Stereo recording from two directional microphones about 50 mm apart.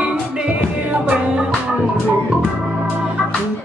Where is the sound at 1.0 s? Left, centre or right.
Right.